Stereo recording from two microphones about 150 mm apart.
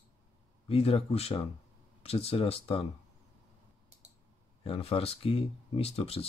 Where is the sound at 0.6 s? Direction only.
40° left (ahead or behind).